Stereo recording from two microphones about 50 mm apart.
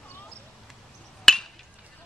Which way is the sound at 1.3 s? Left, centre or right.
Centre.